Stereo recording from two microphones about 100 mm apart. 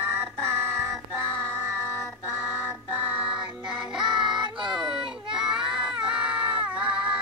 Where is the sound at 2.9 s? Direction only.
15° right (ahead or behind).